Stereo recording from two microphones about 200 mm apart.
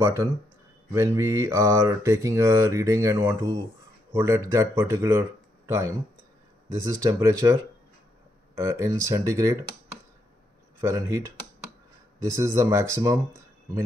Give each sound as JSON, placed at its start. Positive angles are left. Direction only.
{"t": 0.0, "sound": "mantra", "side_deg": -15}
{"t": 8.5, "sound": "mantra", "side_deg": -15}
{"t": 10.8, "sound": "mantra", "side_deg": -15}